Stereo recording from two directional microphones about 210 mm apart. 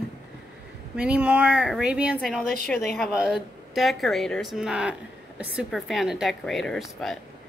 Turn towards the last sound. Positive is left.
turn(degrees=0)  # may be behind; listen again after turning